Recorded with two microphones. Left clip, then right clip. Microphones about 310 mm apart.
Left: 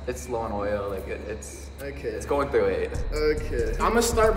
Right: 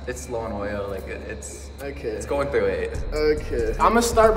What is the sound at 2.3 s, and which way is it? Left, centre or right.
Speech, centre.